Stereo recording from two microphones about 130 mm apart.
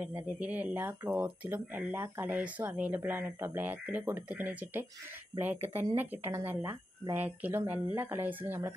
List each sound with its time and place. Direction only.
0.0 s speech: 10° right (ahead or behind)